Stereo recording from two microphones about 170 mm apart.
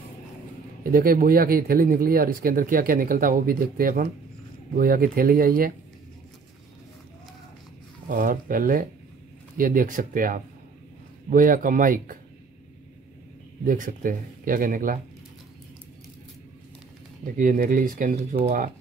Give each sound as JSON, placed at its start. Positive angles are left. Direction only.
{"t": 0.9, "sound": "speech", "side_deg": -60}
{"t": 8.1, "sound": "speech", "side_deg": -55}
{"t": 13.7, "sound": "speech", "side_deg": -55}
{"t": 17.4, "sound": "speech", "side_deg": -50}